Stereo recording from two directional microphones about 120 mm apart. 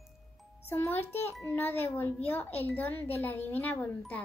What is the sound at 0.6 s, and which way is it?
Speech, 20° left (ahead or behind).